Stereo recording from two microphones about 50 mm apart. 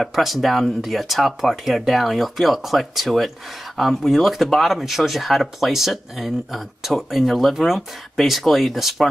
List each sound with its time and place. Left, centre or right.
0.0 s speech: centre